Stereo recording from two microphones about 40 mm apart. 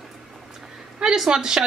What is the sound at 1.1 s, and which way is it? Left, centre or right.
Speech, centre.